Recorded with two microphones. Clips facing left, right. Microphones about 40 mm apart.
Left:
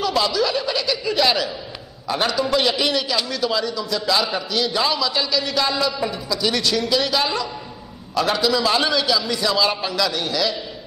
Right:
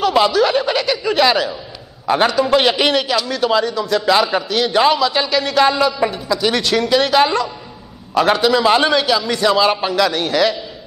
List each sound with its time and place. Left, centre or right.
0.0 s a man's voice: right
5.7 s speech: right
5.9 s a man's voice: right